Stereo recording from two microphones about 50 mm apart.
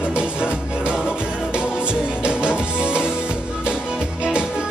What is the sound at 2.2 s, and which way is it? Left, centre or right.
Music, centre.